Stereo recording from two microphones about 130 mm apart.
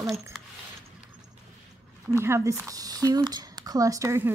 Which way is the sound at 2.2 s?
20° right (ahead or behind).